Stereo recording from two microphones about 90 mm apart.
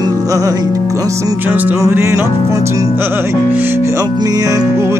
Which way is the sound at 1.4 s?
20° right (ahead or behind).